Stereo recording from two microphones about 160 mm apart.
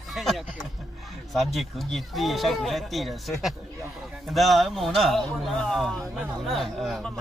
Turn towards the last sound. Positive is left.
turn(degrees=0)  # may be behind; listen again after turning